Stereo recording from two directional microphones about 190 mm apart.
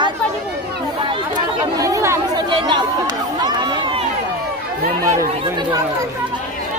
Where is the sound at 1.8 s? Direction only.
15° right (ahead or behind).